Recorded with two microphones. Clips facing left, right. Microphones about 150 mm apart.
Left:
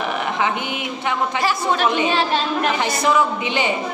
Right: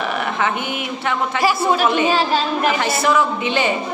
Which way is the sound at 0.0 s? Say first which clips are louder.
Right 1 dB; 20° left (ahead or behind).